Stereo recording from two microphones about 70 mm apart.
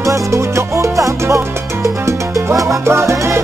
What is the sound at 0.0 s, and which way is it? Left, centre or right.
Music, right.